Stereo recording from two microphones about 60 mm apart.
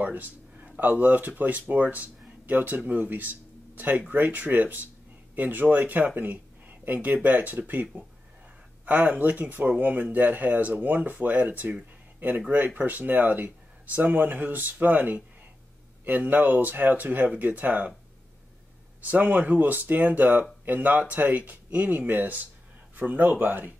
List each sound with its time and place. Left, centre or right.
0.0 s a sound: right
0.7 s speech: right
19.0 s a man's voice: right